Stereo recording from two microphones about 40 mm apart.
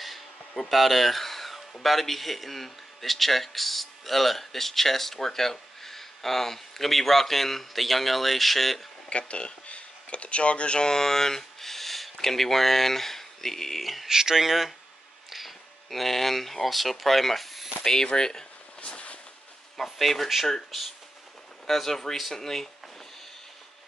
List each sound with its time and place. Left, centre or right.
0.6 s a man's voice: centre
9.1 s speech: left; by 14.0 s centre
14.0 s speech: centre
18.0 s speech: centre
18.9 s a sound: left
19.8 s a man's voice: centre
21.6 s a man's voice: centre